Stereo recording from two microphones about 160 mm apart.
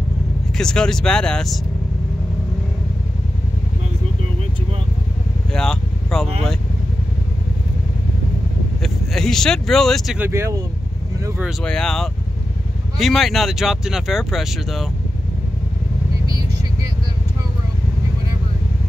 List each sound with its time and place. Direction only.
0.6 s speech: 5° left (ahead or behind)
5.5 s speech: 5° left (ahead or behind)
8.8 s speech: 5° left (ahead or behind)
10.1 s speech: 15° right (ahead or behind)
11.4 s speech: 5° left (ahead or behind)